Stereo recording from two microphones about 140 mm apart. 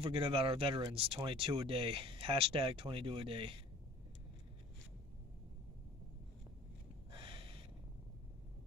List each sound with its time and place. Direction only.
0.0 s speech: 45° right (ahead or behind)
7.1 s snort: 35° right (ahead or behind)